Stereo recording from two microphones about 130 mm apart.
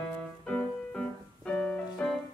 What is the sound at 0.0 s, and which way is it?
Piano, 5° left (ahead or behind).